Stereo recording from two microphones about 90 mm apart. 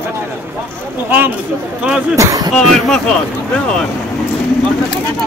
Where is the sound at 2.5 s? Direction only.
5° left (ahead or behind).